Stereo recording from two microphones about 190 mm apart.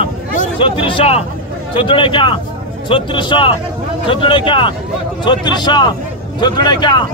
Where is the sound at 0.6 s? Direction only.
25° left (ahead or behind).